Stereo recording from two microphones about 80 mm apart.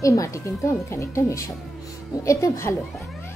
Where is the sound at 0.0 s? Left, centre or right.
Left.